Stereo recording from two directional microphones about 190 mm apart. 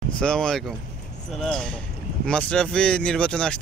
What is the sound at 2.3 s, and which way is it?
Speech, 5° left (ahead or behind).